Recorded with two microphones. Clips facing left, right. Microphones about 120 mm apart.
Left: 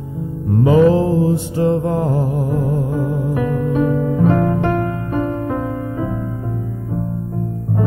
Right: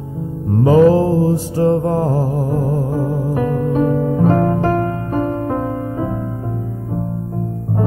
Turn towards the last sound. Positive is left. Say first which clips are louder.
# right 1 dB
turn(degrees=-40)  # may be behind; listen again after turning